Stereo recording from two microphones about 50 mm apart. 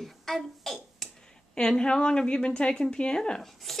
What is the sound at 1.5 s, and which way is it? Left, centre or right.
Speech, centre.